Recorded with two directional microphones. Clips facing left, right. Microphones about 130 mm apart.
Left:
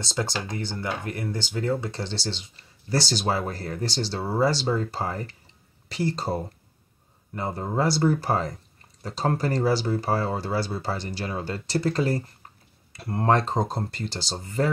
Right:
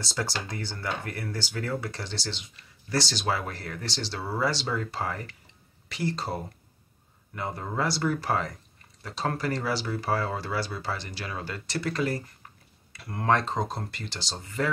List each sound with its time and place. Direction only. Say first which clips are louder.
0.0 s speech: left 3 dB; 20° left (ahead or behind)
7.3 s speech: left 4 dB; 30° left (ahead or behind)